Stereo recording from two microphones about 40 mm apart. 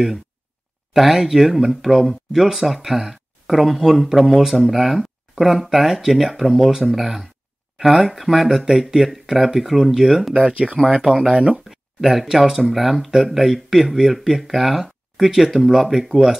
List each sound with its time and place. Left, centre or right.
0.9 s speech: centre
10.3 s speech: right
11.0 s speech: centre
11.6 s speech: centre